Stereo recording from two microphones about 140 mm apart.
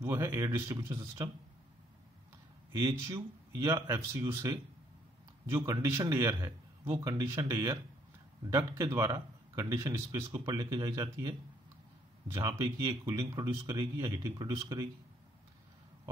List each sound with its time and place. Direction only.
0.0 s speech: 20° right (ahead or behind)
0.8 s speech: 30° right (ahead or behind)
2.7 s speech: 25° right (ahead or behind)